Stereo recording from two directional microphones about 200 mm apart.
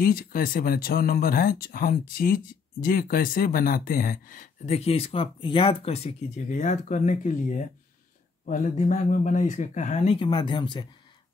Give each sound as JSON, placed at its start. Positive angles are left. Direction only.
{"t": 0.0, "sound": "speech", "side_deg": 45}